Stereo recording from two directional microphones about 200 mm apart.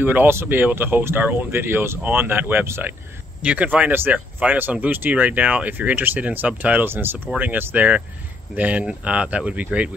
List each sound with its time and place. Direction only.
0.0 s speech: 10° right (ahead or behind)